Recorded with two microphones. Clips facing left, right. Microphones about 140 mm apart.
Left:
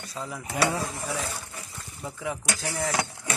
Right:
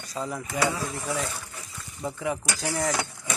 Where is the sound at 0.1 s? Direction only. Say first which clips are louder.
Right 3 dB; centre (ahead or behind).